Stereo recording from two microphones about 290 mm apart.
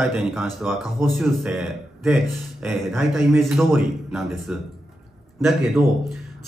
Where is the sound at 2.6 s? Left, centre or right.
Centre.